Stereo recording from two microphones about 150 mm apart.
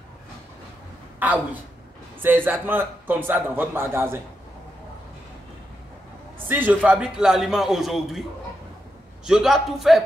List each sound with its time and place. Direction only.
1.2 s a man's voice: 10° right (ahead or behind)
6.5 s a man's voice: 10° right (ahead or behind)
9.2 s a man's voice: 5° right (ahead or behind)